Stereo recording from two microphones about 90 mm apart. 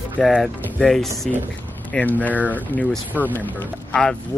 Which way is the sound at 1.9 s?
15° left (ahead or behind).